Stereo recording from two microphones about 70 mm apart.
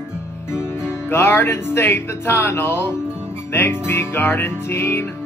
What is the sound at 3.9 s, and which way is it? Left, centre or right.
Speech, left.